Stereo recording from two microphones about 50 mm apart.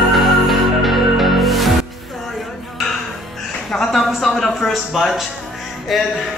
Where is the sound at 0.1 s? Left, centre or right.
Centre.